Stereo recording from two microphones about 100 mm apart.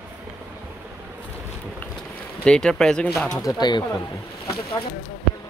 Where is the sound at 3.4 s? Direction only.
45° left (ahead or behind).